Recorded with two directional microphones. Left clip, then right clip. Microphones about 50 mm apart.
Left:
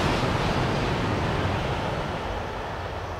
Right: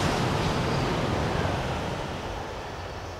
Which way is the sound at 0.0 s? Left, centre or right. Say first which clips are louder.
Left 2 dB; centre.